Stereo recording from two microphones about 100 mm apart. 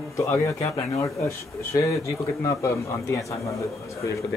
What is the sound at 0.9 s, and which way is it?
Speech, 30° left (ahead or behind).